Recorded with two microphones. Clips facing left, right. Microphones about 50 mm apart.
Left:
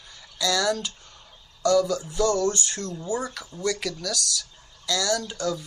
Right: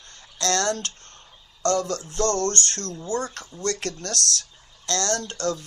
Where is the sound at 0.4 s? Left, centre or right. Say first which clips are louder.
Even; right.